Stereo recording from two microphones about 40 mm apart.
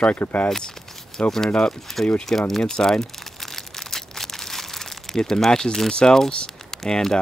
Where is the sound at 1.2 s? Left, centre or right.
Left.